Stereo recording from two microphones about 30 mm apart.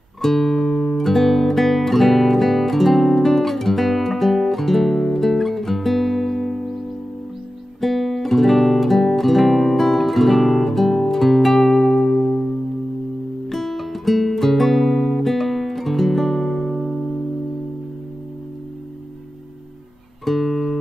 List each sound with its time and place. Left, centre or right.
0.2 s guitar: centre
5.1 s music: centre
7.8 s guitar: centre
12.1 s music: left
13.5 s guitar: centre
20.2 s music: centre